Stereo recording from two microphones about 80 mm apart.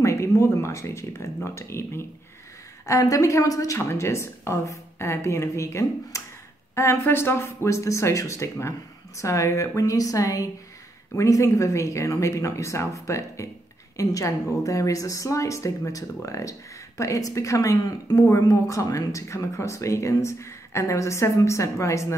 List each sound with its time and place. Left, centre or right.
0.0 s speech: left
2.9 s a woman's voice: left